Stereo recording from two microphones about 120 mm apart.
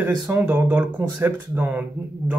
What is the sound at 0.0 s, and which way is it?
Speech, 15° right (ahead or behind).